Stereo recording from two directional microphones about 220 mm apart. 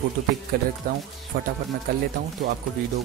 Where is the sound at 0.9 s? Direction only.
40° right (ahead or behind).